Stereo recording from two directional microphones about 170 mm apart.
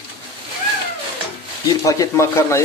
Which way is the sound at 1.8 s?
20° left (ahead or behind).